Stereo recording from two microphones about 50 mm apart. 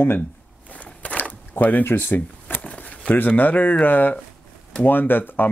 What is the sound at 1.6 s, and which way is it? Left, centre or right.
Speech, left.